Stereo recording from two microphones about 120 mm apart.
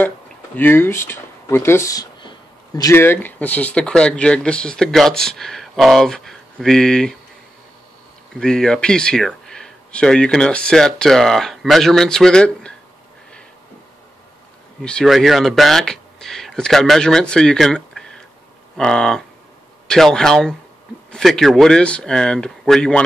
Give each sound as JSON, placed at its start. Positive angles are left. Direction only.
{"t": 0.6, "sound": "speech", "side_deg": 20}
{"t": 2.2, "sound": "a sound", "side_deg": 30}
{"t": 2.9, "sound": "speech", "side_deg": 20}
{"t": 8.4, "sound": "speech", "side_deg": 5}
{"t": 14.8, "sound": "speech", "side_deg": 5}